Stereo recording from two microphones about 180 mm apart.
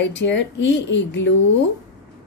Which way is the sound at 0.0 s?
85° left.